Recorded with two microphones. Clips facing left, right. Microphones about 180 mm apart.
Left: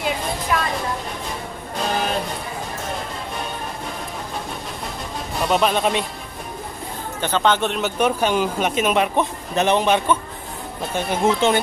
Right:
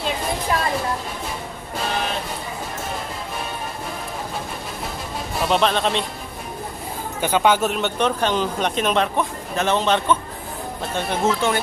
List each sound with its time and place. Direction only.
0.5 s vehicle: 30° right (ahead or behind)
5.4 s speech: 5° left (ahead or behind)
7.2 s speech: 10° right (ahead or behind)
8.0 s speech: 10° left (ahead or behind)